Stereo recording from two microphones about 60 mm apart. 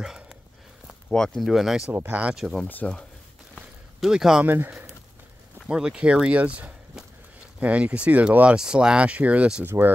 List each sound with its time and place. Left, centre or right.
0.0 s a sound: centre
1.1 s speech: centre
1.4 s speech: centre
2.0 s speech: right
2.8 s speech: centre
3.5 s a sound: centre
4.5 s speech: right
5.7 s speech: centre
9.7 s speech: right